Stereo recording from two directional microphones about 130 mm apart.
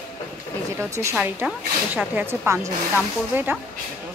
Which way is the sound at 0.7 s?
20° right (ahead or behind).